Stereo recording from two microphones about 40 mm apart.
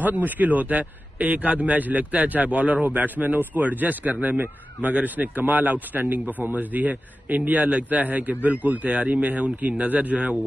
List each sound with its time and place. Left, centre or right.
0.0 s a man's voice: right
8.9 s speech: right